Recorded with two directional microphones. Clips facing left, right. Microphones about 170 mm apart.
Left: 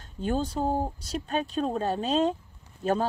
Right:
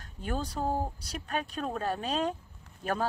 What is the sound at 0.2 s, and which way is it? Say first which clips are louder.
Speech: left 5 dB; 25° left (ahead or behind).